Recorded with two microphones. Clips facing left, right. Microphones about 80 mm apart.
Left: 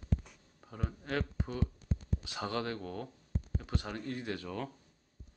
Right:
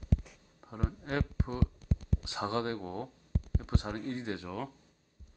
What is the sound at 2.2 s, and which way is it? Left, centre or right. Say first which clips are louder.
Speech: right 3 dB; right.